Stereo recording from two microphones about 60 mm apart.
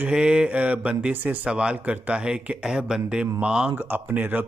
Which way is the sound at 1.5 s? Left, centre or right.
Centre.